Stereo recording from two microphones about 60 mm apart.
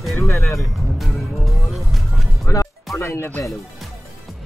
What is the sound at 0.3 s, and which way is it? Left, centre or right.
Speech, left.